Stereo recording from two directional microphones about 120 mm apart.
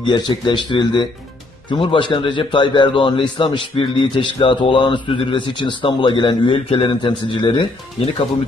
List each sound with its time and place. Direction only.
0.0 s a man's voice: 40° left (ahead or behind)